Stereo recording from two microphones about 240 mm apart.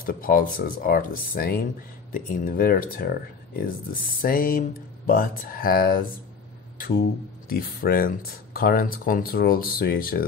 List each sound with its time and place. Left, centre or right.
0.0 s speech: left
4.2 s speech: left